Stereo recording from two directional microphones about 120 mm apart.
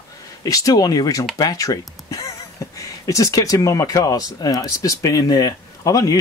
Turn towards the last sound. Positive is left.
turn(degrees=30)  # may be behind; listen again after turning